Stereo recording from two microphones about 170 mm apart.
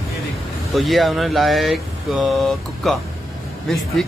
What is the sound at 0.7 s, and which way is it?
Speech, centre (ahead or behind).